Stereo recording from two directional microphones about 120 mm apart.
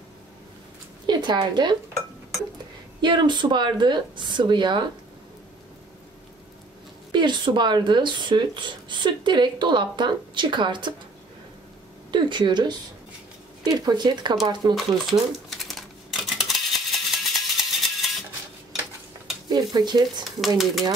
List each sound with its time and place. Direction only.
1.0 s a woman's voice: 35° right (ahead or behind)
3.0 s speech: 40° right (ahead or behind)
7.1 s speech: 40° right (ahead or behind)
12.1 s speech: 40° right (ahead or behind)
14.8 s a sound: centre (ahead or behind)
19.5 s speech: 35° right (ahead or behind)
20.2 s speech: centre (ahead or behind)